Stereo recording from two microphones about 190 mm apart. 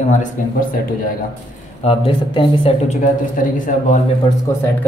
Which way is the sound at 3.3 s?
45° left (ahead or behind).